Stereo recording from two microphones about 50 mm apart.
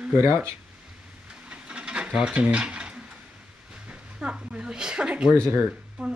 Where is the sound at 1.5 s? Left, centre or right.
Right.